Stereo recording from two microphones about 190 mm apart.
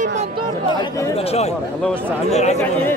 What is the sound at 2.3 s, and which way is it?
Speech, 35° left (ahead or behind).